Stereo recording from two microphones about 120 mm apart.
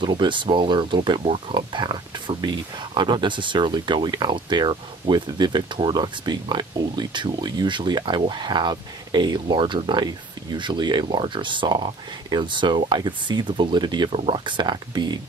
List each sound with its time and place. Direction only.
0.0 s speech: 40° right (ahead or behind)